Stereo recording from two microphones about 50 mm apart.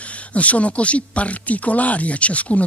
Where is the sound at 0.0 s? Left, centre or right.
Left.